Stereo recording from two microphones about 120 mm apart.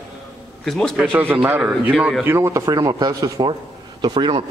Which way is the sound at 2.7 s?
35° right (ahead or behind).